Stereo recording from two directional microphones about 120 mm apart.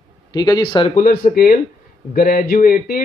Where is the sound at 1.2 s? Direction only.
90° left.